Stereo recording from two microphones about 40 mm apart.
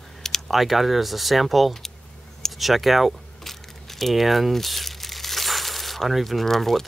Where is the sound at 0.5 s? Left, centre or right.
Centre.